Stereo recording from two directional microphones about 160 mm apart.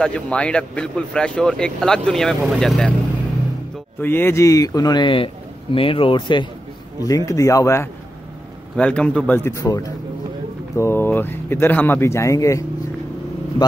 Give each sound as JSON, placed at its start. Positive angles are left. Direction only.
{"t": 0.0, "sound": "speech", "side_deg": 5}
{"t": 4.0, "sound": "a man's voice", "side_deg": 15}
{"t": 8.7, "sound": "speech", "side_deg": 5}
{"t": 9.4, "sound": "a man's voice", "side_deg": 20}